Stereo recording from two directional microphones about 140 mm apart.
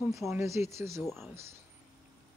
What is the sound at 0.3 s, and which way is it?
Speech, 20° right (ahead or behind).